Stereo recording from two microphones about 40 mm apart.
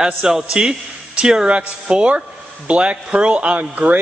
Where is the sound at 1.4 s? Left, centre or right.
Right.